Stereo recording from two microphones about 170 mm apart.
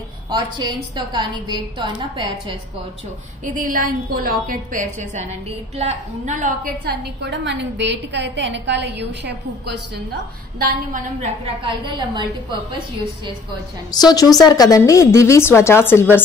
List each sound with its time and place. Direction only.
0.3 s a woman's voice: 25° right (ahead or behind)
3.4 s a woman's voice: 55° right (ahead or behind); by 9.8 s 85° right
10.6 s a woman's voice: 65° right (ahead or behind)
11.6 s a woman's voice: 30° right (ahead or behind)
13.9 s a woman's voice: 25° left (ahead or behind)